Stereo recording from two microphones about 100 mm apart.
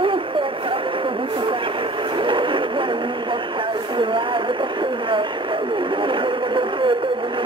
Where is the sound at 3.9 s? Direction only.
55° right (ahead or behind).